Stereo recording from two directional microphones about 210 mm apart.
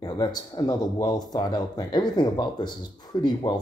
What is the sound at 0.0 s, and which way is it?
Speech, 20° left (ahead or behind).